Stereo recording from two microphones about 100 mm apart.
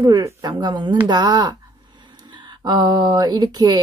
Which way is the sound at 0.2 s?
35° right (ahead or behind).